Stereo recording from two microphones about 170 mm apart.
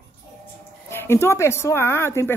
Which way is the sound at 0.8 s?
15° left (ahead or behind).